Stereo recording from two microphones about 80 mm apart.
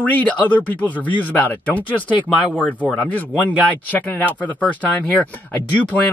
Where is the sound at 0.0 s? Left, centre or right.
Centre.